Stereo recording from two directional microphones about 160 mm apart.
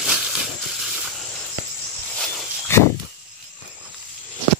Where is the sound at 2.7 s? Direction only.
15° left (ahead or behind).